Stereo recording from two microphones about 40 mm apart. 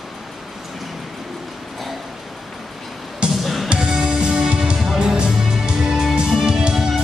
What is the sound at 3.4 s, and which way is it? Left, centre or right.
Music, centre.